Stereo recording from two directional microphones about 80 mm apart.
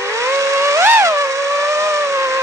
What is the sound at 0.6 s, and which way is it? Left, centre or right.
Vehicle, right.